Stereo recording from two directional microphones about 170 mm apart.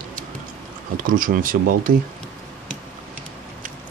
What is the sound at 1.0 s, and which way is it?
Speech, 55° right (ahead or behind).